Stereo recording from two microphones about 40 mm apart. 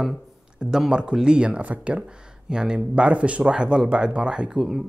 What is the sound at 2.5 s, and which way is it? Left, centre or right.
Speech, centre.